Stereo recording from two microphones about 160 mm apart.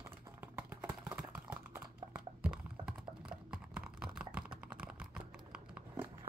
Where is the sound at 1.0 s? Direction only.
10° right (ahead or behind).